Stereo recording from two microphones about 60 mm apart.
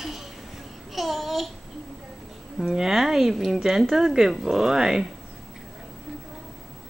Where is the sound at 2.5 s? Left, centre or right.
Centre.